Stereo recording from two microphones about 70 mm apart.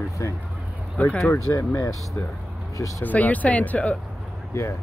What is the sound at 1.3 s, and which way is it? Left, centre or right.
Speech, left.